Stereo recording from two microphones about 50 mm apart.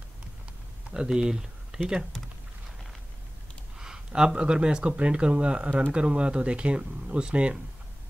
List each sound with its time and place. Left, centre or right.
0.9 s speech: centre
3.7 s speech: centre